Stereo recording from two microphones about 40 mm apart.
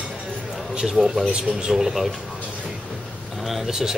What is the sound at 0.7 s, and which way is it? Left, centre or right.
Speech, centre.